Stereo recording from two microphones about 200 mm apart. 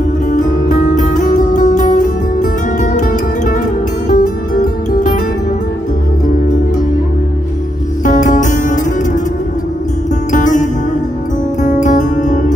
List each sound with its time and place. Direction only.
0.3 s music: 40° left (ahead or behind)
8.0 s music: 40° left (ahead or behind)
10.3 s music: 40° left (ahead or behind)